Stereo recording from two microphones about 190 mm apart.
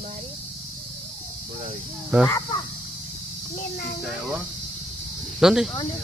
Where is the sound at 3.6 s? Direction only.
50° left (ahead or behind).